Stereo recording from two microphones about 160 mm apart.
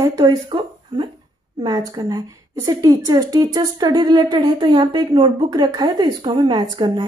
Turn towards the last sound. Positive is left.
turn(degrees=-25)  # may be behind; listen again after turning